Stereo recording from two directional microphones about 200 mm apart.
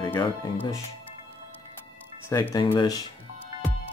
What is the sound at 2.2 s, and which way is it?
Speech, 15° left (ahead or behind).